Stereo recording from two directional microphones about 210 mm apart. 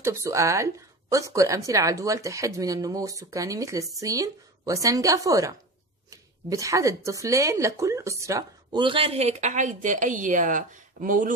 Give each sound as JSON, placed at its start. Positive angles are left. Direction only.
{"t": 0.0, "sound": "a woman's voice", "side_deg": -15}